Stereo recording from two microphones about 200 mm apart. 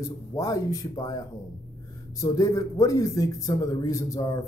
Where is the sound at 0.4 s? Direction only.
15° left (ahead or behind).